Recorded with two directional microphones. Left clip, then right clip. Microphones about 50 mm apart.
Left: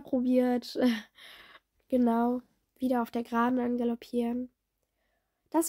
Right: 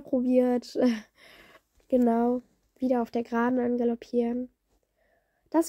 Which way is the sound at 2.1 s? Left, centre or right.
Centre.